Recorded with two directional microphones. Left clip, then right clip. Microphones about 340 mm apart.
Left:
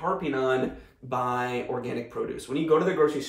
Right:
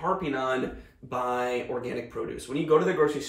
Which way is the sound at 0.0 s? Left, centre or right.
Centre.